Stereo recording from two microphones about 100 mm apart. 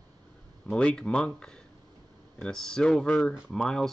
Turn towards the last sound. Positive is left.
turn(degrees=5)  # may be behind; listen again after turning